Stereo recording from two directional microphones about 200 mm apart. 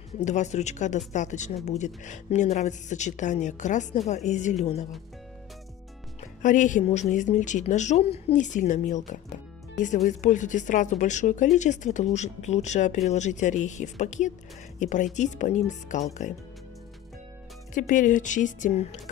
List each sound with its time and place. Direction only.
0.2 s speech: 35° left (ahead or behind)
6.4 s speech: 40° left (ahead or behind)
17.7 s speech: 40° left (ahead or behind)